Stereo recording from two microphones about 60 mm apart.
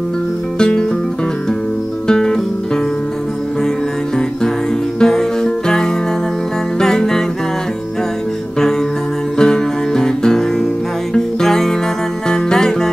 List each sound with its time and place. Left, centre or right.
0.6 s music: centre
2.0 s music: centre
5.0 s music: centre
9.4 s music: centre